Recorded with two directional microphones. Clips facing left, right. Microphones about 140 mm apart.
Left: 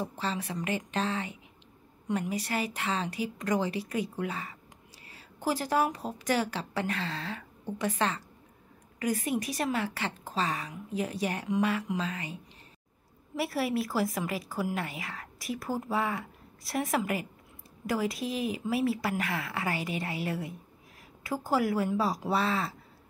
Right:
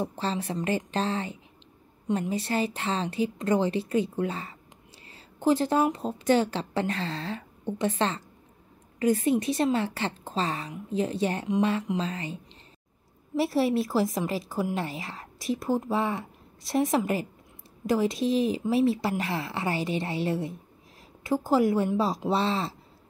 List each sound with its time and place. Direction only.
0.0 s a woman's voice: 30° right (ahead or behind)
13.4 s a woman's voice: 25° right (ahead or behind)